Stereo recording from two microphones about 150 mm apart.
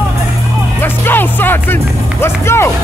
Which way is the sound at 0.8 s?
15° left (ahead or behind).